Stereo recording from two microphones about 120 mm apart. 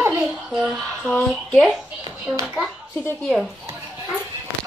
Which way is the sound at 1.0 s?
10° left (ahead or behind).